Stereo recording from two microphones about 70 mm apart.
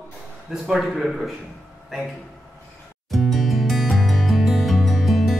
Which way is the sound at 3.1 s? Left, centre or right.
Centre.